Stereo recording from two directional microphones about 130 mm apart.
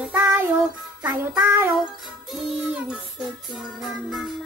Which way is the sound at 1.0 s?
25° right (ahead or behind).